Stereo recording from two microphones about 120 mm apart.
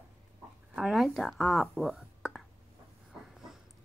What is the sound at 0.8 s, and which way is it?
Speech, centre (ahead or behind).